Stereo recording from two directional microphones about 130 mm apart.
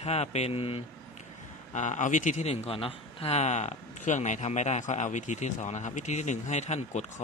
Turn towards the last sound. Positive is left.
turn(degrees=60)  # may be behind; listen again after turning